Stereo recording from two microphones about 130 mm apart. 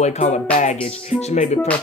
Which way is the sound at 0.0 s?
60° left (ahead or behind).